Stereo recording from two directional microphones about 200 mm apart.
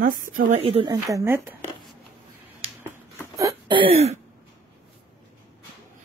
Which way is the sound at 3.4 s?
20° right (ahead or behind).